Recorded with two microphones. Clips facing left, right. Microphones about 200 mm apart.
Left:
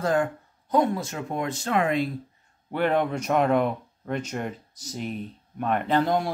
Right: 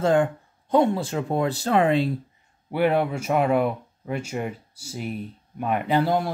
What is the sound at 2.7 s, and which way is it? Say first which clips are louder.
Speech: right 2 dB; 10° right (ahead or behind).